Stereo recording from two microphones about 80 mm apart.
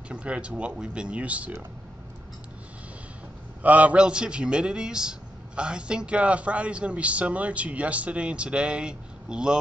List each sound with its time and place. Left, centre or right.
0.1 s a man's voice: centre
3.6 s a man's voice: centre